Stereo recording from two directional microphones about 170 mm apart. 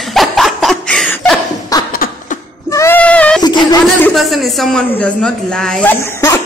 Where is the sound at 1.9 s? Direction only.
55° left (ahead or behind).